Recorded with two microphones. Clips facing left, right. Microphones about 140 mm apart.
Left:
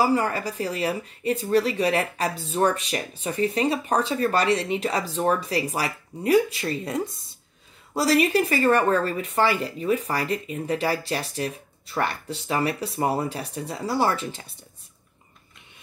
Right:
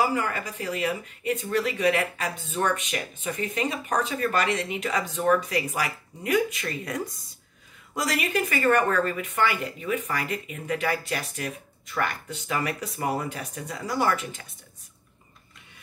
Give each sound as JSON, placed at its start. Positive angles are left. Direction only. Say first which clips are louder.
{"t": 0.0, "sound": "speech", "louder": "left 4 dB", "side_deg": 35}